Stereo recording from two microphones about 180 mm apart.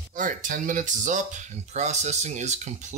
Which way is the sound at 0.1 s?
50° right (ahead or behind).